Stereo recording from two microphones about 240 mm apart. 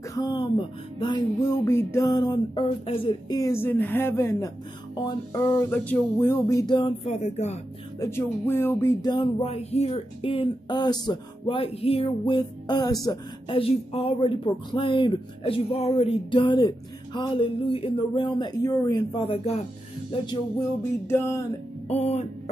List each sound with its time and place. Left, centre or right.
0.1 s music: centre
8.0 s music: centre
21.8 s music: left